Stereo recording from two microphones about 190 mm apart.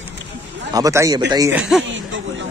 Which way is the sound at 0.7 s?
15° right (ahead or behind).